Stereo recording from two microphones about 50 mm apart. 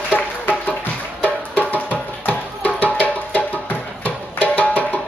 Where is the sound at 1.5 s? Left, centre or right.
Left.